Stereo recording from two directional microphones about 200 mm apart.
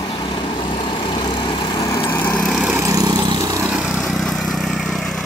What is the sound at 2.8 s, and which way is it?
Vehicle, 15° right (ahead or behind).